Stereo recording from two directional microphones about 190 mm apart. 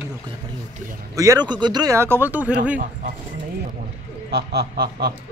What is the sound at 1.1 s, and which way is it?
Speech, 15° right (ahead or behind).